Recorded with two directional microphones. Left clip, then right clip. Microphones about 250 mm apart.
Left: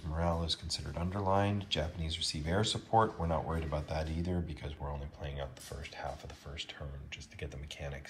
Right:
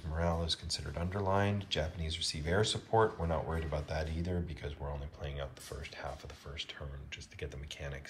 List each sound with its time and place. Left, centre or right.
0.1 s speech: centre